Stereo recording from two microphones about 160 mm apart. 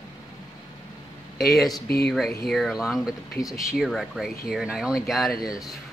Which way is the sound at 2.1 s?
Centre (ahead or behind).